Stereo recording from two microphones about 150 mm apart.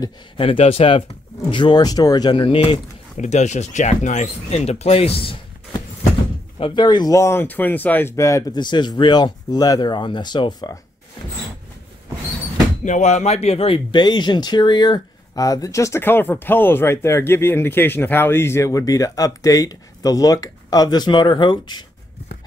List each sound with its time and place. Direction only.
0.0 s speech: 40° left (ahead or behind)
3.2 s speech: 50° left (ahead or behind); by 10.8 s 30° left (ahead or behind)
12.8 s speech: 55° left (ahead or behind); by 21.8 s 30° left (ahead or behind)